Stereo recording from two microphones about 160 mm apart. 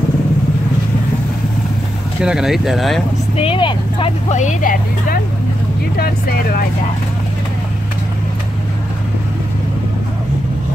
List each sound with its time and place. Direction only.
2.2 s speech: centre (ahead or behind)
3.3 s speech: 35° left (ahead or behind)
4.3 s speech: 50° left (ahead or behind)
5.9 s speech: 70° left (ahead or behind)